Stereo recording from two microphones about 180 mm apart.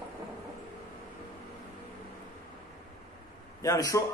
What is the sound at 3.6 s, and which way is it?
Speech, 20° left (ahead or behind).